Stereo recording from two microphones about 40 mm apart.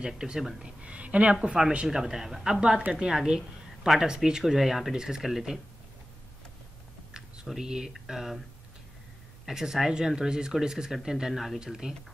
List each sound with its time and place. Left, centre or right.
0.0 s speech: centre
0.8 s a woman's voice: right
1.3 s a woman's voice: right
7.4 s speech: centre
9.5 s speech: centre
11.8 s speech: centre